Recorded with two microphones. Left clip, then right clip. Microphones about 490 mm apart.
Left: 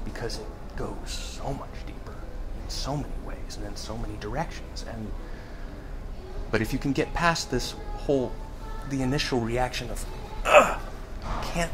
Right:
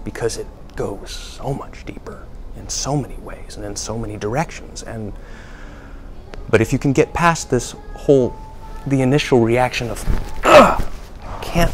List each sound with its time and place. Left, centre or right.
0.1 s speech: right
2.7 s speech: right
6.5 s speech: right
10.4 s sigh: right
11.6 s speech: right